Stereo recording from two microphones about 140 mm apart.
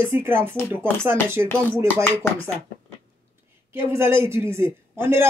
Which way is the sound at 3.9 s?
15° right (ahead or behind).